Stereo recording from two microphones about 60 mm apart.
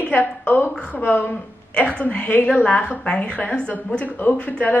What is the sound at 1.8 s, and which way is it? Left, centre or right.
Speech, centre.